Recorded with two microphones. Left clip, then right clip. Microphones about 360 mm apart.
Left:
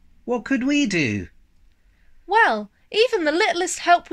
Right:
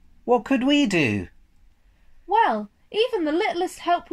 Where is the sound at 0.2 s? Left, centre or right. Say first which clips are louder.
Right 3 dB; right.